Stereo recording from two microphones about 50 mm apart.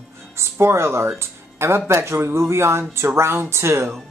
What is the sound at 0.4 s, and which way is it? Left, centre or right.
Speech, right.